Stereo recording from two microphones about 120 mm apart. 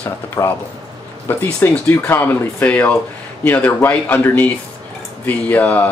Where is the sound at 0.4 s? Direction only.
30° left (ahead or behind).